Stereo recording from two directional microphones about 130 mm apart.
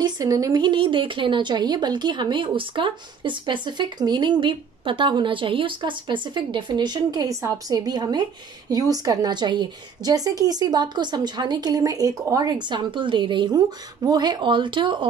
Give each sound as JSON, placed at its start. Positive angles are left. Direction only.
{"t": 0.0, "sound": "a woman's voice", "side_deg": -25}